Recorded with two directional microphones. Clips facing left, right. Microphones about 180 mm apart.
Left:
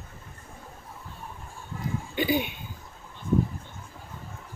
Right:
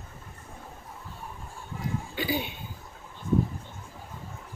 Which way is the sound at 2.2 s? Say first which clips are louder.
Left 6 dB; 20° left (ahead or behind).